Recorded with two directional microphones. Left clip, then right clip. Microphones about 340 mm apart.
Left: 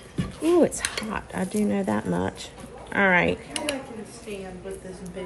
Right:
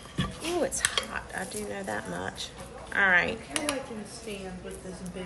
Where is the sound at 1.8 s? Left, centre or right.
Left.